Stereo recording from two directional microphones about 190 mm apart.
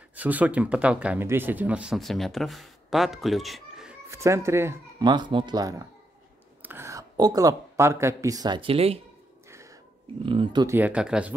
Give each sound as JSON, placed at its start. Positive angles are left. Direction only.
{"t": 0.1, "sound": "speech", "side_deg": -10}
{"t": 4.1, "sound": "speech", "side_deg": -15}
{"t": 10.2, "sound": "speech", "side_deg": -25}
{"t": 10.8, "sound": "speech", "side_deg": -5}